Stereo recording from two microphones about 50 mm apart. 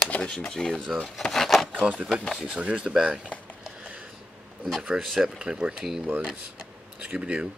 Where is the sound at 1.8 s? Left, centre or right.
Right.